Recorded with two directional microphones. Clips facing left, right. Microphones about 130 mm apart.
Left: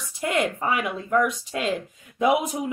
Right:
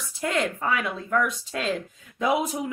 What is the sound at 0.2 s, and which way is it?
Speech, 15° left (ahead or behind).